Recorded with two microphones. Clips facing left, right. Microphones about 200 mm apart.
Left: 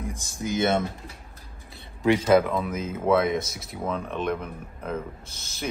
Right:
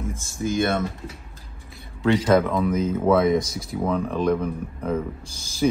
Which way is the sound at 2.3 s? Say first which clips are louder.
Right 1 dB; 5° left (ahead or behind).